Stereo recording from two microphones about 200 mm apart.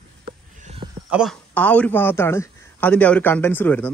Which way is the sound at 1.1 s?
Centre (ahead or behind).